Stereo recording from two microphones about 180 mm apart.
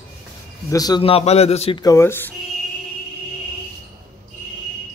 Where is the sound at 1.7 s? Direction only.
15° left (ahead or behind).